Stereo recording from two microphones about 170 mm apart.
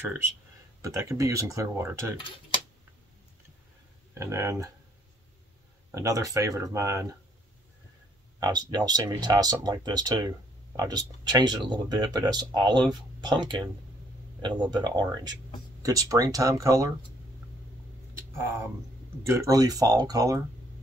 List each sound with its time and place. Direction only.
0.8 s speech: 20° right (ahead or behind)
4.1 s speech: 15° right (ahead or behind)
5.9 s speech: 15° right (ahead or behind)
8.4 s speech: 25° right (ahead or behind)
19.2 s speech: 15° right (ahead or behind)